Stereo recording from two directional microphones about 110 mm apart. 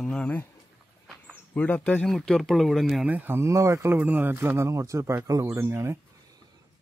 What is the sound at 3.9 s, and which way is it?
Speech, 15° right (ahead or behind).